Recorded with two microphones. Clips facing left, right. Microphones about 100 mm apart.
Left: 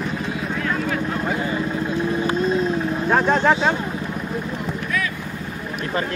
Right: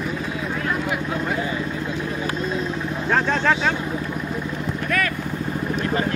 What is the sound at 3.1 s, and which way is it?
Speech, 15° left (ahead or behind).